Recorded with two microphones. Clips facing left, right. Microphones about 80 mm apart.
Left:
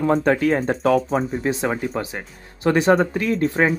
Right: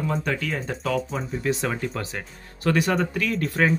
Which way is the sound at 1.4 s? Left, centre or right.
Left.